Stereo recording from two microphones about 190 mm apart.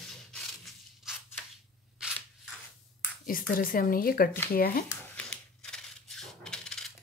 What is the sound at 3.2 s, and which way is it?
Speech, 50° left (ahead or behind).